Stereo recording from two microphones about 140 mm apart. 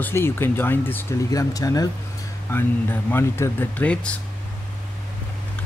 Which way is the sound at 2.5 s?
15° left (ahead or behind).